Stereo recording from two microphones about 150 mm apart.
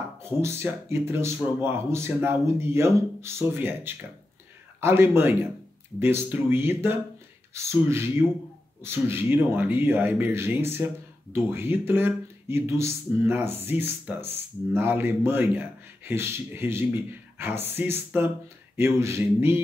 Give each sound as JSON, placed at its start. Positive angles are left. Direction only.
{"t": 0.2, "sound": "speech", "side_deg": -15}